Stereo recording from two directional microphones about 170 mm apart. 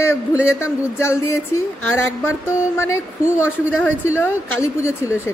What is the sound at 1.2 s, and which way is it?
A woman's voice, 15° left (ahead or behind).